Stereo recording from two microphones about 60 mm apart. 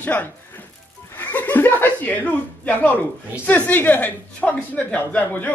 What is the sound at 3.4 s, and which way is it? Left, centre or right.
Speech, left.